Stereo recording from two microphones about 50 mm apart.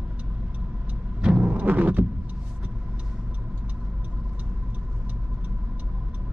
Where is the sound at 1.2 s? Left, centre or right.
Right.